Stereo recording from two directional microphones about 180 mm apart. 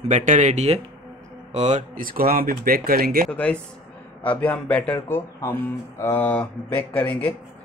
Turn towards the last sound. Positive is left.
turn(degrees=10)  # may be behind; listen again after turning